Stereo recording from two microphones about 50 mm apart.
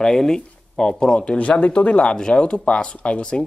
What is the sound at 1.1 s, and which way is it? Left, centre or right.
Speech, left.